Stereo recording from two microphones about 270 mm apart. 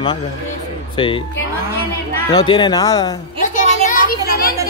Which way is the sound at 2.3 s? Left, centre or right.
Centre.